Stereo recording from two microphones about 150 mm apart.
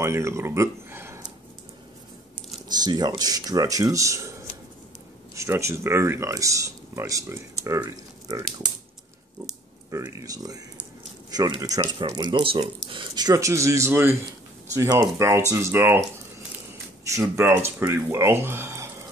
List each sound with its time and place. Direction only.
0.0 s speech: 20° right (ahead or behind)
2.8 s speech: 30° right (ahead or behind)
5.3 s speech: 20° right (ahead or behind)
9.8 s speech: 20° right (ahead or behind)
17.1 s speech: 20° right (ahead or behind)